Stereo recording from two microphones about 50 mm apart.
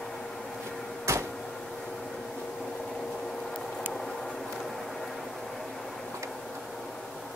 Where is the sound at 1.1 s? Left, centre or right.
Right.